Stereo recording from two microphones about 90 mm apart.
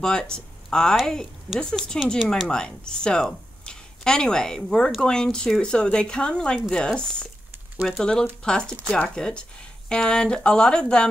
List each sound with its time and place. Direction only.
0.0 s speech: 5° left (ahead or behind)